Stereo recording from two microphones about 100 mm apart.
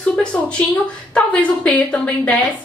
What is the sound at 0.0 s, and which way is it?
A woman's voice, 10° left (ahead or behind).